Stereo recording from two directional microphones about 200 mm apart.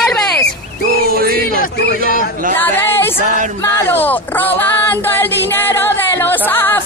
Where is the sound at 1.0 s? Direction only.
50° right (ahead or behind).